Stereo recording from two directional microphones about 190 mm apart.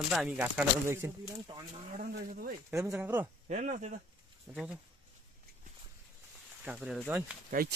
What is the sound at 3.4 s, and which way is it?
Speech, 40° right (ahead or behind).